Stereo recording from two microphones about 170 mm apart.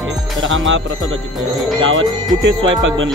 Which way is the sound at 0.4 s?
90° right.